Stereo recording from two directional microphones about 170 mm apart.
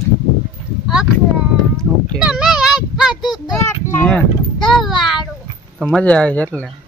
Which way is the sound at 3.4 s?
15° left (ahead or behind).